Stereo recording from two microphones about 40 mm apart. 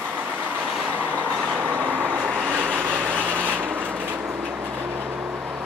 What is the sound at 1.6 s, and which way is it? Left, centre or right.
Vehicle, right.